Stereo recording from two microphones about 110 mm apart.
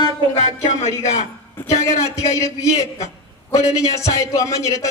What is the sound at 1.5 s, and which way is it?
A woman's voice, 30° left (ahead or behind).